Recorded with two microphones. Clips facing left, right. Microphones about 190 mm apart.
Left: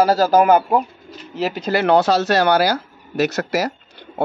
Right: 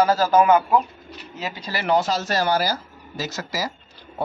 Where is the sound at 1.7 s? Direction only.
65° left (ahead or behind).